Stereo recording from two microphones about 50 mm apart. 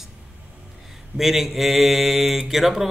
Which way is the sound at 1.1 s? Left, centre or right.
Centre.